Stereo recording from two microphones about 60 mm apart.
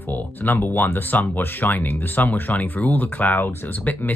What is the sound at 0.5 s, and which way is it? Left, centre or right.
Speech, left.